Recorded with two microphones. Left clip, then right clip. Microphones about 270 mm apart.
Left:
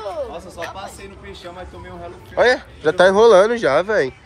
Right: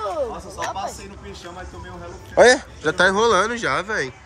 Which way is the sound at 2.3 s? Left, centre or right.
Centre.